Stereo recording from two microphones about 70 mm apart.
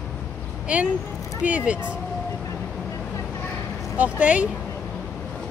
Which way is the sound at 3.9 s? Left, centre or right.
Right.